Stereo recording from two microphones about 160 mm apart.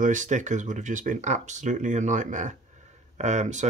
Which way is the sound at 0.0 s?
50° right (ahead or behind).